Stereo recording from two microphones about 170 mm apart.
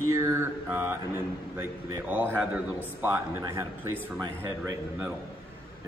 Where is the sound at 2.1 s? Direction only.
10° right (ahead or behind).